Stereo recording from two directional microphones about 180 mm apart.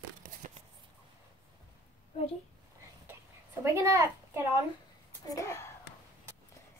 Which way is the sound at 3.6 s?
15° right (ahead or behind).